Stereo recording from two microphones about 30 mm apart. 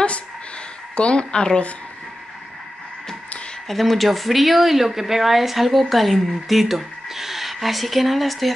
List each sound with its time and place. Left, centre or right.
0.9 s a woman's voice: left
3.6 s speech: centre